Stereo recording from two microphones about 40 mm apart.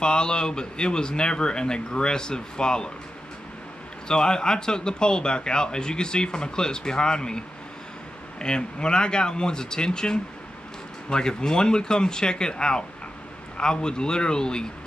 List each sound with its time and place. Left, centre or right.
0.0 s speech: left
4.1 s speech: centre